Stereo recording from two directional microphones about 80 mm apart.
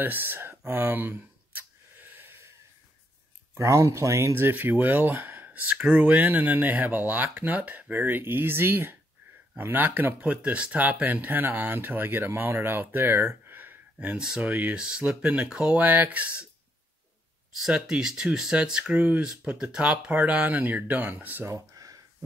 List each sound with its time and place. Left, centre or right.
0.0 s a sound: right
3.5 s speech: right
14.1 s speech: centre
14.5 s speech: right
17.6 s speech: centre
21.5 s a sound: right